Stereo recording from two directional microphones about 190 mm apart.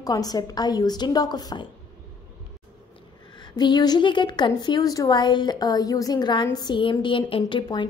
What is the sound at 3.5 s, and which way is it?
A woman's voice, 20° left (ahead or behind).